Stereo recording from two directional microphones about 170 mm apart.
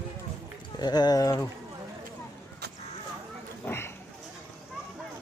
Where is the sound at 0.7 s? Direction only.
25° left (ahead or behind).